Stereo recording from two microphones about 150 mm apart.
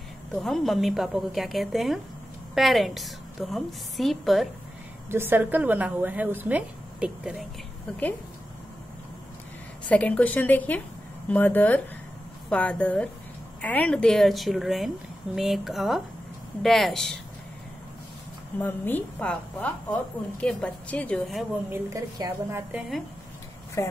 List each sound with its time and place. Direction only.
0.3 s a woman's voice: centre (ahead or behind)
5.1 s a woman's voice: 15° right (ahead or behind)
9.8 s a woman's voice: 10° left (ahead or behind)
18.6 s speech: 10° left (ahead or behind)
21.6 s a woman's voice: 15° right (ahead or behind)
23.8 s speech: 20° left (ahead or behind)